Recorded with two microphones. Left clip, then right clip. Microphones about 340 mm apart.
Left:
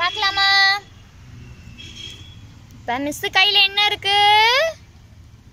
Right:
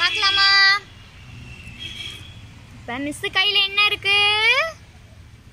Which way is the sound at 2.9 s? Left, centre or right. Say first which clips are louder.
Left 4 dB; left.